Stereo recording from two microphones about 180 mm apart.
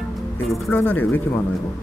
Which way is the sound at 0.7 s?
10° left (ahead or behind).